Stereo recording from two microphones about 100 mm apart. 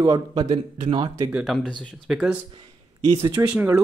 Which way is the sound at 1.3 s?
10° right (ahead or behind).